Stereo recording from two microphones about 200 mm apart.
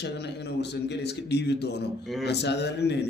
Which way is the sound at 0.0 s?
60° left (ahead or behind).